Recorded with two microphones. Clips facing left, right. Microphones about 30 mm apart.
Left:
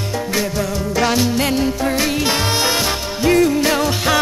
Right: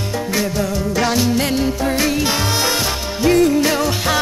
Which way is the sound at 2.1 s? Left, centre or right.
Centre.